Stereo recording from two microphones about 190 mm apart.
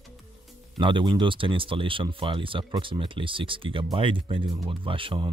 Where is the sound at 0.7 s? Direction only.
25° right (ahead or behind).